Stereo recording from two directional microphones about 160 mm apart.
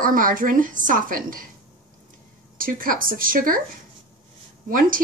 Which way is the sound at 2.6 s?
60° right (ahead or behind).